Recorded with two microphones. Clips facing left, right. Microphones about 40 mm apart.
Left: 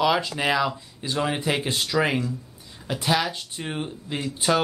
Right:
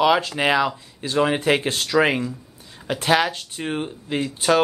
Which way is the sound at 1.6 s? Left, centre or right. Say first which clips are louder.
Right 4 dB; centre.